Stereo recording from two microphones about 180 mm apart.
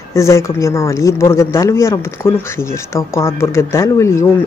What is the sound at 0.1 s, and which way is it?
Speech, 15° left (ahead or behind).